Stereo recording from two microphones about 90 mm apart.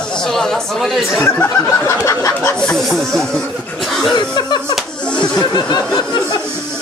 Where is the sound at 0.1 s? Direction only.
5° left (ahead or behind).